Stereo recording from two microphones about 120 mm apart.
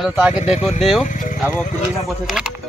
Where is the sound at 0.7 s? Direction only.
5° right (ahead or behind).